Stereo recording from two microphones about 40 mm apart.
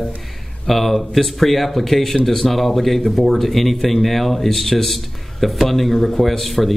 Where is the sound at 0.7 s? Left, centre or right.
Centre.